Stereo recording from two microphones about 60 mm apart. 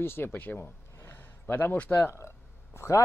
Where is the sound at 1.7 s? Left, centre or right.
Left.